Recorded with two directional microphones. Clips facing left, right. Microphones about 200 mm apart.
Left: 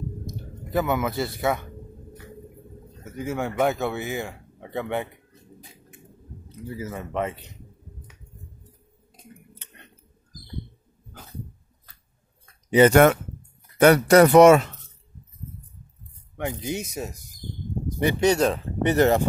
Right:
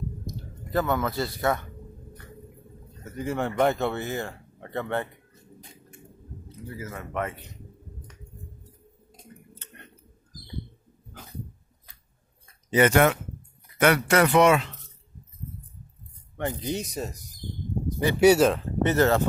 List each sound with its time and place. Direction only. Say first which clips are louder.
0.7 s speech: left 2 dB; 10° left (ahead or behind)
3.0 s a man's voice: even; 5° left (ahead or behind)
6.7 s speech: left 4 dB; 20° left (ahead or behind)
12.9 s speech: left 5 dB; 50° left (ahead or behind)
13.7 s speech: left 6 dB; 40° left (ahead or behind)
16.3 s speech: even; 10° left (ahead or behind)
18.2 s speech: right 4 dB; 5° right (ahead or behind)
18.8 s speech: left 3 dB; 15° left (ahead or behind)